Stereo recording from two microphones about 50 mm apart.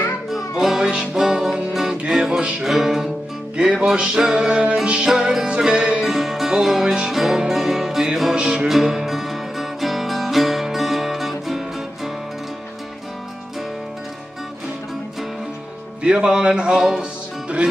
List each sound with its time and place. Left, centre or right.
0.3 s music: centre
3.5 s music: centre
6.0 s music: centre
8.4 s music: centre
8.6 s music: centre
16.0 s speech: centre
17.0 s music: right